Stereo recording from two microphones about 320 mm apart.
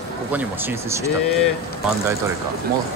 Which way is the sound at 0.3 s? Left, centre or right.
Centre.